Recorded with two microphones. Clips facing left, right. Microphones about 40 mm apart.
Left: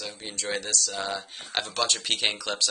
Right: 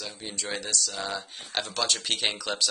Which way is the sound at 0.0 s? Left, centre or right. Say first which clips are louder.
Left 1 dB; centre.